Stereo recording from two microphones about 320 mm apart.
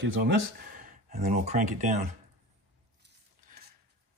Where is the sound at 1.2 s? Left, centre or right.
Right.